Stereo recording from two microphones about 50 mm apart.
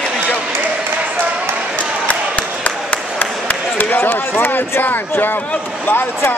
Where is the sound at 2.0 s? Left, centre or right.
Left.